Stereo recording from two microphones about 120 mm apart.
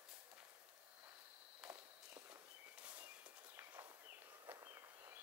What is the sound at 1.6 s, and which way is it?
Walk, 5° right (ahead or behind).